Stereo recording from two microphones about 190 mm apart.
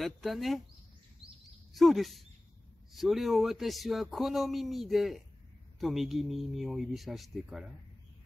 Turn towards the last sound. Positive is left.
turn(degrees=0)  # may be behind; listen again after turning